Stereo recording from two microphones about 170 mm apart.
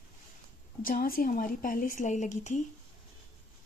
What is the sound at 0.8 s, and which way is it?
A woman's voice, 60° left (ahead or behind).